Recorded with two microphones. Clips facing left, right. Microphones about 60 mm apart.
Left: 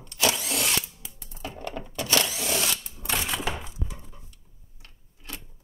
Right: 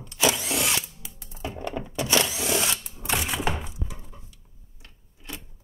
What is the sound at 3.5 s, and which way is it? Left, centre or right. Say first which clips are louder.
Thunk: right 1 dB; centre.